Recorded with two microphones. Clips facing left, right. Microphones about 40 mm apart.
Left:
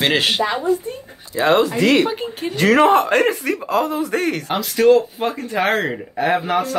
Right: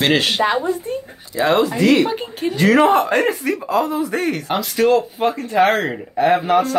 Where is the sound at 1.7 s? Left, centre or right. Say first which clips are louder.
Right 1 dB; left.